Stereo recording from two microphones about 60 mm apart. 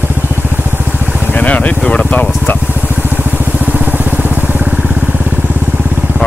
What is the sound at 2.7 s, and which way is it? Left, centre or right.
Vehicle, right.